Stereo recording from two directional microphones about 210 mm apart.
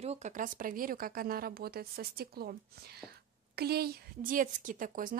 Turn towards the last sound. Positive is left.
turn(degrees=-40)  # may be behind; listen again after turning